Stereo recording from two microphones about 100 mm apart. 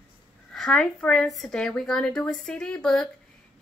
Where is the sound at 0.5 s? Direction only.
5° left (ahead or behind).